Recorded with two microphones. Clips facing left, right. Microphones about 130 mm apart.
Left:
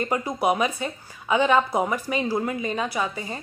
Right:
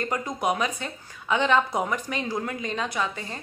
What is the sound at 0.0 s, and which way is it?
A woman's voice, 10° left (ahead or behind).